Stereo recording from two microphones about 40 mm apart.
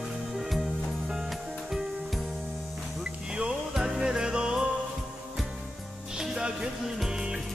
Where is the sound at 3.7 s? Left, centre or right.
Centre.